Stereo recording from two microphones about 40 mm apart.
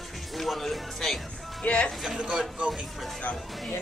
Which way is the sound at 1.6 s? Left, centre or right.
Left.